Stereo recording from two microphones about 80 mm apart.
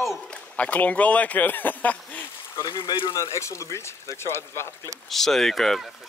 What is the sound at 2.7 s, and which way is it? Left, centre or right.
Speech, left.